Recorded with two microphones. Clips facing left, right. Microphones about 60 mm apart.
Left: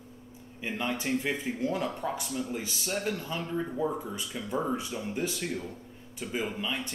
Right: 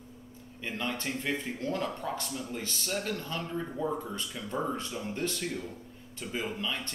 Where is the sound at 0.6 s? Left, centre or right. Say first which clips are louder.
Left 2 dB; centre.